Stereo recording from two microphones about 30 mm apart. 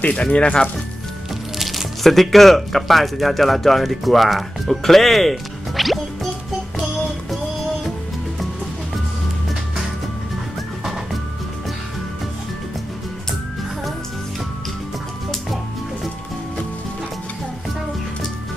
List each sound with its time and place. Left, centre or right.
0.4 s speech: left
1.6 s music: centre
2.0 s speech: centre